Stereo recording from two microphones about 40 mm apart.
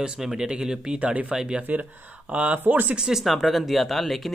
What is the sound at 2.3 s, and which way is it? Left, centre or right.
Speech, right.